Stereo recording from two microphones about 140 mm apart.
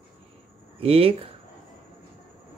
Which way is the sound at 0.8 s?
45° right (ahead or behind).